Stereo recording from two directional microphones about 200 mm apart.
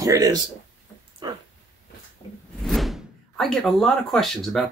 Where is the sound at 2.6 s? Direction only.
Centre (ahead or behind).